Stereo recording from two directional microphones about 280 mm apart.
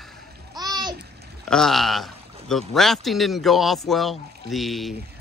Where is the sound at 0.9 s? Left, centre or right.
Right.